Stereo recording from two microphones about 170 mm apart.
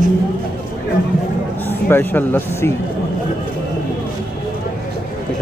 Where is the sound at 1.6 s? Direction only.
10° left (ahead or behind).